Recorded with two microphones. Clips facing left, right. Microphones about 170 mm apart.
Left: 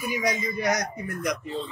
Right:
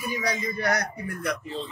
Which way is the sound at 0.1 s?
15° left (ahead or behind).